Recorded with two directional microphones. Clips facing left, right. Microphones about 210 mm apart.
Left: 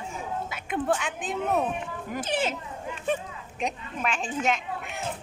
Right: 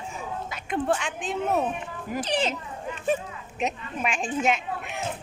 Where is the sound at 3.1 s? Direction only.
5° right (ahead or behind).